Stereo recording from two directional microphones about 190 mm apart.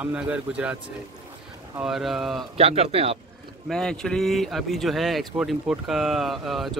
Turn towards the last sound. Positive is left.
turn(degrees=0)  # may be behind; listen again after turning